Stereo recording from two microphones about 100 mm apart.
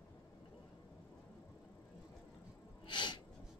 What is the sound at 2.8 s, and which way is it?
Sneeze, 50° left (ahead or behind).